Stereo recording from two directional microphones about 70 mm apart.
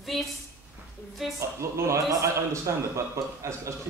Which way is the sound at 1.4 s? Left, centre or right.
Right.